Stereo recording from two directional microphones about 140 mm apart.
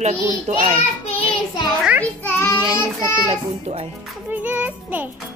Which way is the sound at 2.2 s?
15° left (ahead or behind).